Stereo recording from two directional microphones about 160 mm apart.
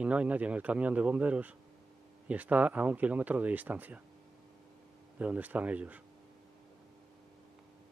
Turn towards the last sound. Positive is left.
turn(degrees=-10)  # may be behind; listen again after turning